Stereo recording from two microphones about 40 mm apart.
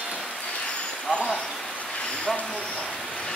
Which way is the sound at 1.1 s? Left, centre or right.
Left.